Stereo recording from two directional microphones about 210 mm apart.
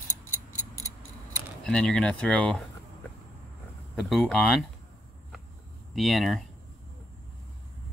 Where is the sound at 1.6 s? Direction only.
5° left (ahead or behind).